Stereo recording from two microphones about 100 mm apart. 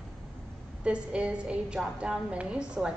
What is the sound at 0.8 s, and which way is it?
A woman's voice, 10° right (ahead or behind).